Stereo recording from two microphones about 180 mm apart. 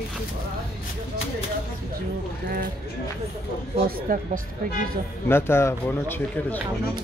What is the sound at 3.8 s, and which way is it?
Speech, 50° right (ahead or behind).